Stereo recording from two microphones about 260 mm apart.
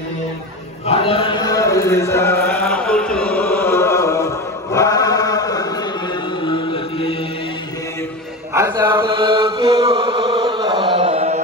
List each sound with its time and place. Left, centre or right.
0.8 s a sound: left
4.7 s chant: centre
6.4 s mantra: centre
8.5 s chant: centre